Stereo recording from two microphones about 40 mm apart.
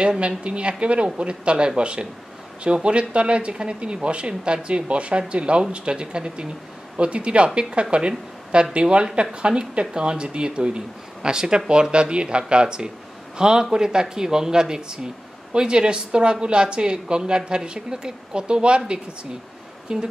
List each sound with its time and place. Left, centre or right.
0.4 s speech: right
19.9 s speech: centre